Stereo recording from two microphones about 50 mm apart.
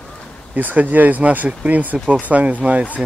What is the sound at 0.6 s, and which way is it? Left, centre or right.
Speech, right.